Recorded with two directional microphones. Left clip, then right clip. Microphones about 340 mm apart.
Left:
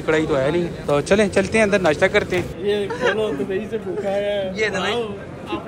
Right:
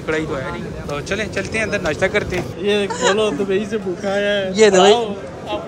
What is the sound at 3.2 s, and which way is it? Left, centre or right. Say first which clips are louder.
A man's voice: right 4 dB; right.